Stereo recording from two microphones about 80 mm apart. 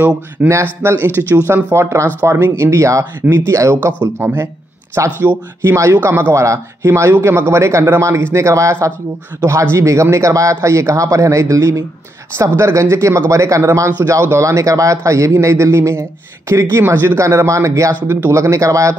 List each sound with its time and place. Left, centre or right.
0.4 s speech: right
3.2 s speech: right
3.7 s speech: right
6.9 s speech: right